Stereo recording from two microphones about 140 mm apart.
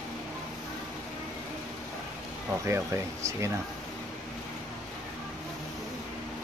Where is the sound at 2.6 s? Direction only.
20° right (ahead or behind).